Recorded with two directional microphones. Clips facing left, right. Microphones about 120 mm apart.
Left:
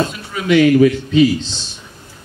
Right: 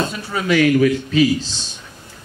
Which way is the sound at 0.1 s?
35° right (ahead or behind).